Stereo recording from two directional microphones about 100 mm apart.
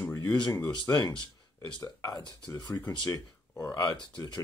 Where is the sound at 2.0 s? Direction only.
35° left (ahead or behind).